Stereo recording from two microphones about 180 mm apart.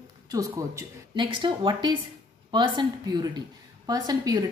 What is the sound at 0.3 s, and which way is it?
A woman's voice, 20° right (ahead or behind).